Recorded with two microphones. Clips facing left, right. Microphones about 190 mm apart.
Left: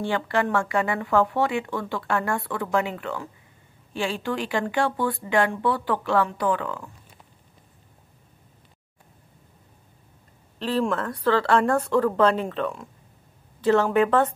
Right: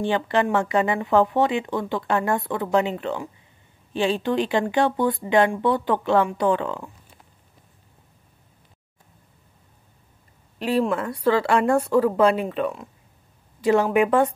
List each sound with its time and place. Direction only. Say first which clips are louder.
0.0 s speech: right 3 dB; 20° right (ahead or behind)
10.6 s a woman's voice: right 2 dB; 10° right (ahead or behind)